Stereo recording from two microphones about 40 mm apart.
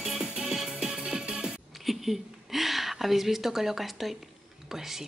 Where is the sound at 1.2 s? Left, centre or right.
Right.